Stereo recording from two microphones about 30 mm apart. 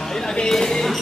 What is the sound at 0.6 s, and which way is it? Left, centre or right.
Music, centre.